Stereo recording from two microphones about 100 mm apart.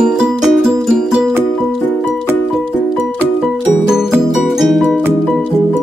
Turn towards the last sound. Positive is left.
turn(degrees=0)  # may be behind; listen again after turning